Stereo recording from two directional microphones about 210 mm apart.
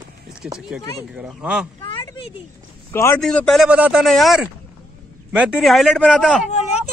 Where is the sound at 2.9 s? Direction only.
15° left (ahead or behind).